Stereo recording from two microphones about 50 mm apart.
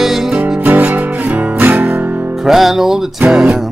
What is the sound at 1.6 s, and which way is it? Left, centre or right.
Guitar, right.